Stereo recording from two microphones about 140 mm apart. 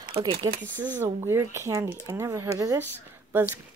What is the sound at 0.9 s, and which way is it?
Speech, 15° right (ahead or behind).